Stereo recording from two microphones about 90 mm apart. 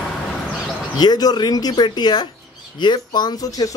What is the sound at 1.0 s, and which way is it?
Speech, 50° left (ahead or behind).